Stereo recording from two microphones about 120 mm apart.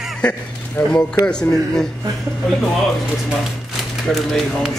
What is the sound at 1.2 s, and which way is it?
Speech, 5° left (ahead or behind).